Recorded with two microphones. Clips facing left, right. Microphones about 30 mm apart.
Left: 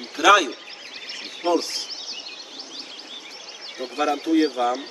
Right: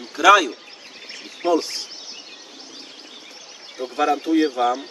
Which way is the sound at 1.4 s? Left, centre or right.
Left.